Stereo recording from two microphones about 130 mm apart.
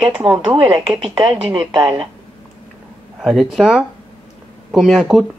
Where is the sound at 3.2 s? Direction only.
Centre (ahead or behind).